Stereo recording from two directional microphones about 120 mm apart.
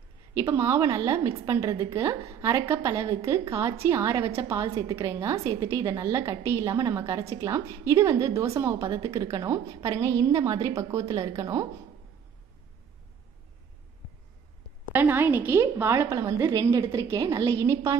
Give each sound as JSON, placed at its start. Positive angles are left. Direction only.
{"t": 0.4, "sound": "a woman's voice", "side_deg": -20}
{"t": 14.9, "sound": "a woman's voice", "side_deg": -15}